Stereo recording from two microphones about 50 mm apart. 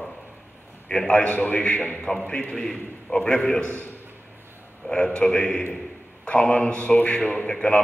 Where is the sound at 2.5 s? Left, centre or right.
Centre.